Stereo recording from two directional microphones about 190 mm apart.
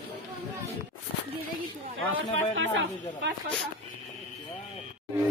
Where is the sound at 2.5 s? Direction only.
90° right.